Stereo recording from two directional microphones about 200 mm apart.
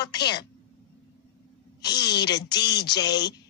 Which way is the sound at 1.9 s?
55° left (ahead or behind).